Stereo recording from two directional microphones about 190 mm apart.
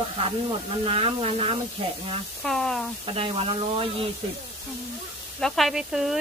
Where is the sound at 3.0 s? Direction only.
30° right (ahead or behind).